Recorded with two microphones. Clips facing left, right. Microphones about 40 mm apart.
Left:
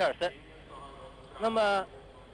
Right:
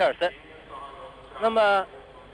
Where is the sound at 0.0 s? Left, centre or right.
Right.